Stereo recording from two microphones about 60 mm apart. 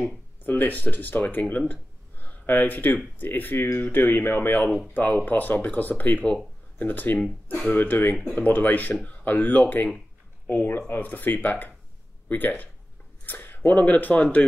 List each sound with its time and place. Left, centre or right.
0.4 s speech: left
1.7 s a sound: left
3.2 s speech: left
4.6 s speech: right
4.9 s speech: left